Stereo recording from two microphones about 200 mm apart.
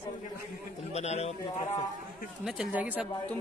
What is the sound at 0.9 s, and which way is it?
Music, 35° left (ahead or behind).